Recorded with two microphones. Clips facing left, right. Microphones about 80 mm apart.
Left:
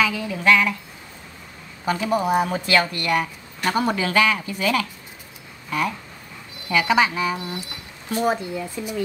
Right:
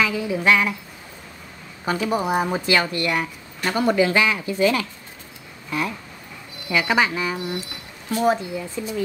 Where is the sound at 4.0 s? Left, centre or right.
Right.